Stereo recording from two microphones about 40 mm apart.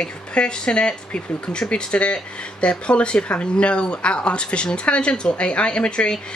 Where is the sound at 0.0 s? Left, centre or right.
Left.